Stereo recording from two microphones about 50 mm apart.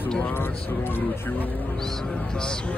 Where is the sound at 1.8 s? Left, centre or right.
Centre.